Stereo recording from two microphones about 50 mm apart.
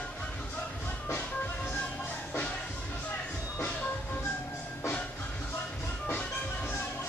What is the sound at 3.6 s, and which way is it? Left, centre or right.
Music, left.